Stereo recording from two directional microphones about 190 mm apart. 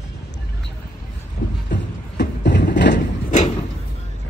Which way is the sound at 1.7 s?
65° left (ahead or behind).